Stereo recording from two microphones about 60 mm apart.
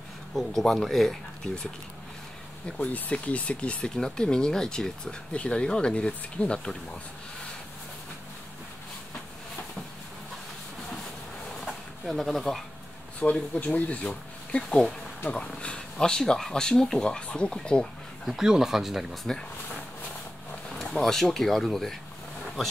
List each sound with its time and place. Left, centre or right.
0.4 s speech: centre
2.8 s speech: left
3.8 s speech: centre
11.6 s a sound: centre
13.2 s speech: left
14.0 s speech: centre
18.2 s speech: centre
20.7 s speech: centre